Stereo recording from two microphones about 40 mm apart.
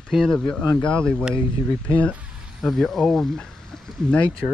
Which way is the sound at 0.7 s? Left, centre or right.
Left.